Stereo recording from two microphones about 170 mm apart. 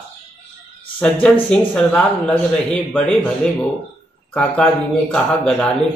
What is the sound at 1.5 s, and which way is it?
Speech, 5° left (ahead or behind).